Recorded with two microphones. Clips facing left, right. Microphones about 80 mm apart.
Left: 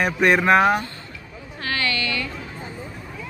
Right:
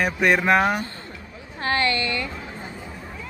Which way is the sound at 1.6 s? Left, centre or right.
Right.